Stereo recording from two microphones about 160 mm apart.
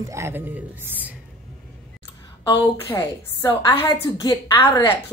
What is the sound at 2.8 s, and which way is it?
A woman's voice, 15° left (ahead or behind).